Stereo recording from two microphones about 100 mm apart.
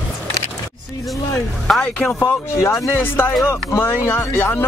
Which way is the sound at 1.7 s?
10° left (ahead or behind).